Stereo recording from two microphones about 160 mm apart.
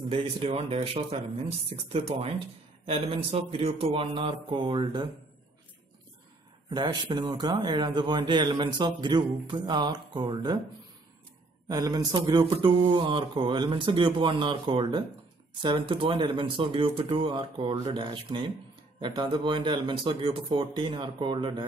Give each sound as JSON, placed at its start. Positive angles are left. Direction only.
{"t": 0.1, "sound": "speech", "side_deg": -40}
{"t": 6.7, "sound": "a man's voice", "side_deg": -25}
{"t": 11.7, "sound": "speech", "side_deg": -25}